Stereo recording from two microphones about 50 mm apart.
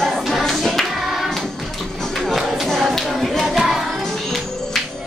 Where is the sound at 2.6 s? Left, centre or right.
Centre.